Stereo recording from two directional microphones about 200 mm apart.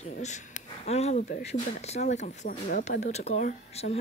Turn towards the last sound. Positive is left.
turn(degrees=35)  # may be behind; listen again after turning